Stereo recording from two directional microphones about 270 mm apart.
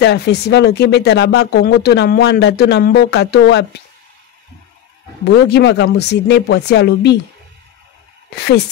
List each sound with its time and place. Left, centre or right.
0.0 s speech: left
5.2 s speech: left